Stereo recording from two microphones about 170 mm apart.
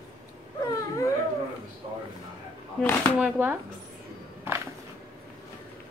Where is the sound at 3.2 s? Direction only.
10° right (ahead or behind).